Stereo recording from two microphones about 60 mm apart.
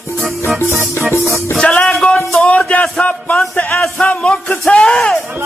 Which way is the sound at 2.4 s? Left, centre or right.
Left.